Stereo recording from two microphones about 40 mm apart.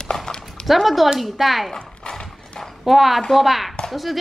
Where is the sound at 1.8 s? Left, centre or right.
Left.